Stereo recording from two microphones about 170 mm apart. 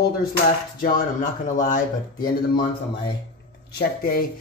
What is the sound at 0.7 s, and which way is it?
Speech, 55° left (ahead or behind).